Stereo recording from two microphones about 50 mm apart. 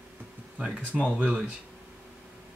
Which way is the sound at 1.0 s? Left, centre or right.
Right.